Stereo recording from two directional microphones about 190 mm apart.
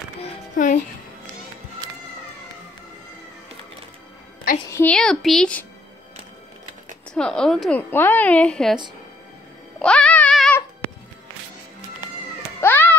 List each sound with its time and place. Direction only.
0.2 s music: 35° left (ahead or behind)
4.6 s a woman's voice: 15° left (ahead or behind)
4.9 s a woman's voice: 5° left (ahead or behind)
7.2 s a woman's voice: 5° left (ahead or behind)
9.8 s music: 5° left (ahead or behind)
12.5 s music: 10° left (ahead or behind)